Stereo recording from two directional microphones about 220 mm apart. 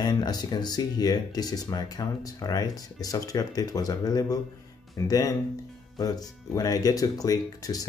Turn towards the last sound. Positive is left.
turn(degrees=15)  # may be behind; listen again after turning